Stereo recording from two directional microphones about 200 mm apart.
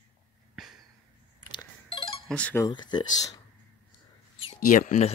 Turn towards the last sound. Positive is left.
turn(degrees=35)  # may be behind; listen again after turning